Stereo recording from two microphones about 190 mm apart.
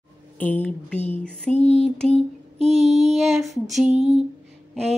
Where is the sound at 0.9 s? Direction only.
35° left (ahead or behind).